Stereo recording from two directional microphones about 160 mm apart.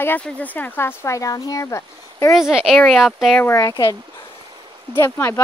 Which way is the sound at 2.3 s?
5° right (ahead or behind).